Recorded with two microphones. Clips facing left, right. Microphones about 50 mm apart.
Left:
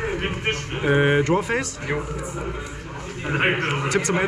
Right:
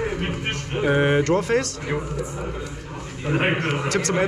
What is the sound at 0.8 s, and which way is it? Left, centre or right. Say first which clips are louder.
Speech: left 1 dB; centre.